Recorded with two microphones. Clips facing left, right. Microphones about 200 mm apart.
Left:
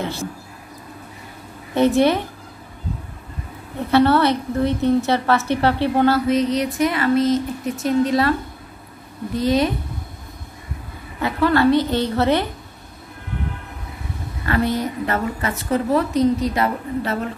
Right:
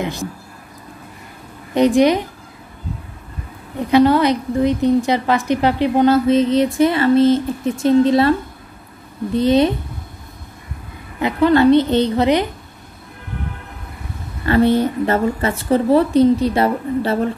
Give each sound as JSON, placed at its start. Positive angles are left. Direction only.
{"t": 0.0, "sound": "speech", "side_deg": -15}
{"t": 1.7, "sound": "a woman's voice", "side_deg": -15}
{"t": 3.9, "sound": "a woman's voice", "side_deg": -15}
{"t": 11.1, "sound": "a woman's voice", "side_deg": -20}
{"t": 14.4, "sound": "a woman's voice", "side_deg": -30}